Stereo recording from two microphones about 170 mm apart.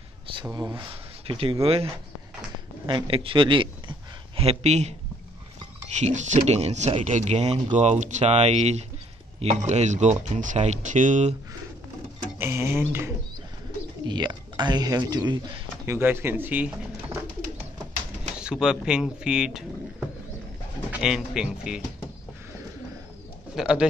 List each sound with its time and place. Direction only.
0.5 s speech: 20° right (ahead or behind)
2.9 s speech: 30° right (ahead or behind)
5.9 s speech: 45° right (ahead or behind)
12.4 s a sound: 15° right (ahead or behind)
14.0 s speech: 25° right (ahead or behind)
15.8 s speech: 15° right (ahead or behind)
18.4 s speech: 5° right (ahead or behind)
20.9 s speech: 5° right (ahead or behind)
23.5 s speech: 5° right (ahead or behind)